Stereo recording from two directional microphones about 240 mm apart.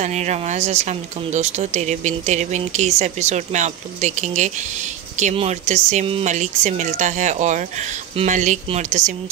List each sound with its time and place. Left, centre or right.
0.0 s speech: right